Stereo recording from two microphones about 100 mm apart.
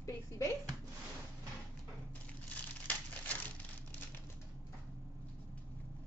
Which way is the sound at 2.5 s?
15° left (ahead or behind).